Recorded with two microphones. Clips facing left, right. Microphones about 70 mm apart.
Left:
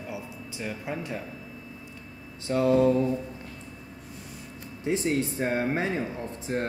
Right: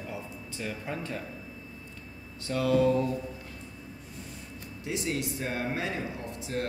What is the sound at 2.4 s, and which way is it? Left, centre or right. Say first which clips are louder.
Mantra: left 3 dB; left.